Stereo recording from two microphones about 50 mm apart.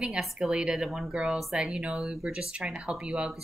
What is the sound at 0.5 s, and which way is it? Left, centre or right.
Speech, centre.